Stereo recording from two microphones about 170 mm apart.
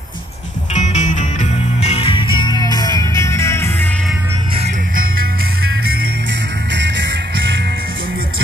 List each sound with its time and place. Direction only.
0.7 s music: 45° left (ahead or behind); by 3.9 s 15° left (ahead or behind)
6.7 s music: 90° right